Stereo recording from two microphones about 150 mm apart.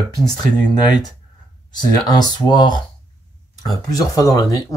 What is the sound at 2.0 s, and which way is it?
Speech, 25° left (ahead or behind).